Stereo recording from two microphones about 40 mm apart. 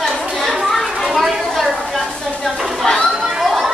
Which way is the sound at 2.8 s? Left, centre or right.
Centre.